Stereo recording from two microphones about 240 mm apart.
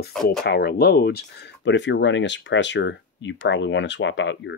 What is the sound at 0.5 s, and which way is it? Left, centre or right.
Speech, left.